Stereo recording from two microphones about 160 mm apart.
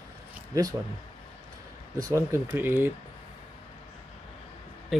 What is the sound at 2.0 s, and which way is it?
Speech, 20° right (ahead or behind).